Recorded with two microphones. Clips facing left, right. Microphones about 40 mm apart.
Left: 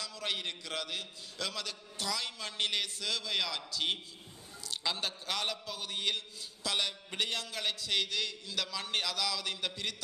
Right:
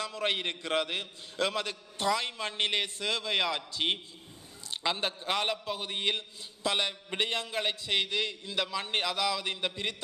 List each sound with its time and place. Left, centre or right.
0.0 s a man's voice: right